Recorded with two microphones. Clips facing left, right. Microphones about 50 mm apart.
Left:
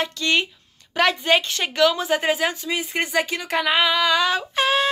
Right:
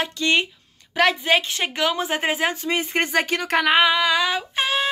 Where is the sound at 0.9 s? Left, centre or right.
Centre; by 3.7 s right.